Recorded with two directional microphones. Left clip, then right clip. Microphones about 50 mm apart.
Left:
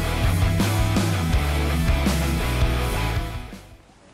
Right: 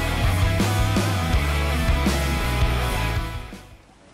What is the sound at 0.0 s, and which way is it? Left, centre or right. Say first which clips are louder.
Music: right 1 dB; centre.